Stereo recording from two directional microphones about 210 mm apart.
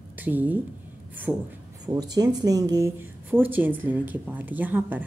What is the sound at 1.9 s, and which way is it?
Speech, 20° right (ahead or behind).